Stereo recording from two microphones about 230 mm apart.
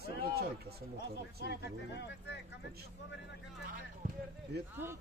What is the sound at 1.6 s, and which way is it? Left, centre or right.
Speech, left.